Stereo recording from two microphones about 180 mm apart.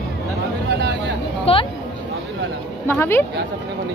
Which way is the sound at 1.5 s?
35° left (ahead or behind).